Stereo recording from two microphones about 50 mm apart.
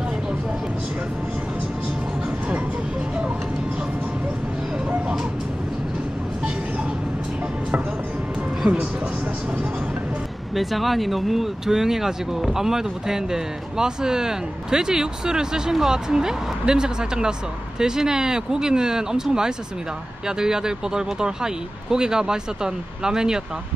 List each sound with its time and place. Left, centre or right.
8.6 s speech: right
10.5 s speech: centre
20.2 s speech: centre